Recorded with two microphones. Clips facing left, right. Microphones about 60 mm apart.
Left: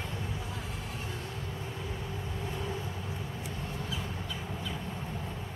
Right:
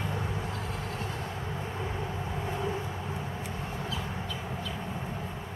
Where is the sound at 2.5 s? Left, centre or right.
Right.